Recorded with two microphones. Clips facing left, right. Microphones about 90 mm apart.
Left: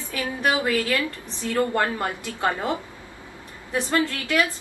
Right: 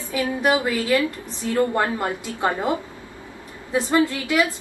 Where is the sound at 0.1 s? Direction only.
20° right (ahead or behind).